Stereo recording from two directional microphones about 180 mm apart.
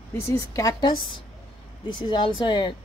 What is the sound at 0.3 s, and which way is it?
Speech, 15° left (ahead or behind).